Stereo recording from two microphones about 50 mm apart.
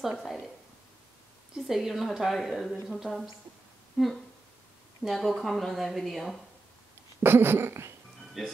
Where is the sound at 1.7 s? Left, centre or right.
Centre.